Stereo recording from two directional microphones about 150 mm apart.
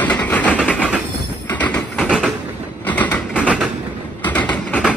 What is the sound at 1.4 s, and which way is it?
Train, 10° left (ahead or behind).